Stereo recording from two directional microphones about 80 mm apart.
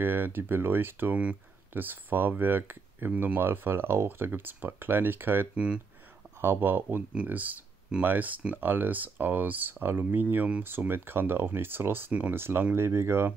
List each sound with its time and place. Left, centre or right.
0.0 s speech: right